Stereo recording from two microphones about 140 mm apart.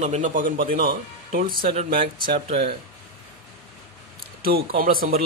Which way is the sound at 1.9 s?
90° right.